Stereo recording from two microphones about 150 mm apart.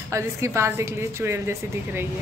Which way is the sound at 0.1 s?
20° right (ahead or behind).